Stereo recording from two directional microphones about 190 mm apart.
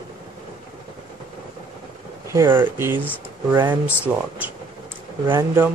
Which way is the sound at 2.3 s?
15° right (ahead or behind).